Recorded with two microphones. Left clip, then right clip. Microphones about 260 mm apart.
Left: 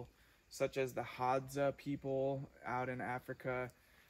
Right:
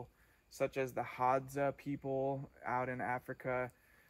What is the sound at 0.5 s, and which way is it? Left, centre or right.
Speech, centre.